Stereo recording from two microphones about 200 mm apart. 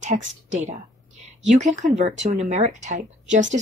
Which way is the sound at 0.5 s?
35° right (ahead or behind).